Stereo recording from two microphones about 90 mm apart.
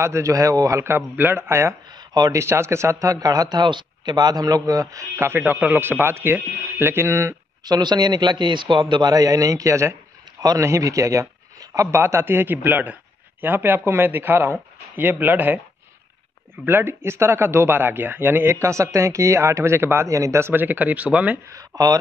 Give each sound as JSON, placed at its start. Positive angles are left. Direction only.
{"t": 0.0, "sound": "a man's voice", "side_deg": -35}
{"t": 1.9, "sound": "a sound", "side_deg": -50}
{"t": 2.3, "sound": "a man's voice", "side_deg": -30}
{"t": 7.6, "sound": "a man's voice", "side_deg": -50}
{"t": 16.6, "sound": "speech", "side_deg": -25}
{"t": 21.5, "sound": "speech", "side_deg": -45}